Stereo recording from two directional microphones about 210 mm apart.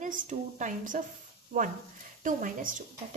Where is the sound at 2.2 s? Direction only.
40° right (ahead or behind).